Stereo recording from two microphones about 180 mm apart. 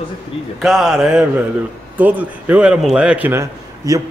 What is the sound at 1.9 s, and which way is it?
A man's voice, 10° right (ahead or behind).